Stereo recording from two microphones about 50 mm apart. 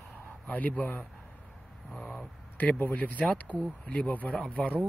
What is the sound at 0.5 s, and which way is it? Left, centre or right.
Speech, left.